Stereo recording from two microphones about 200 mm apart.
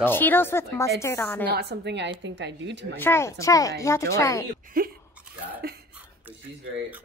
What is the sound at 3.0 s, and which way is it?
Speech, 10° left (ahead or behind).